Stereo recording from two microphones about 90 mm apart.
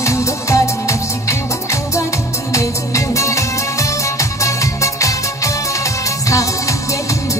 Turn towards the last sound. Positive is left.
turn(degrees=35)  # may be behind; listen again after turning